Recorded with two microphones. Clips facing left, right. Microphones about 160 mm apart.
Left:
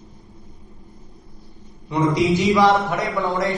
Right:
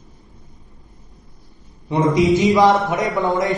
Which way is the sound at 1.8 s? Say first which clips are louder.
Right 3 dB; 20° right (ahead or behind).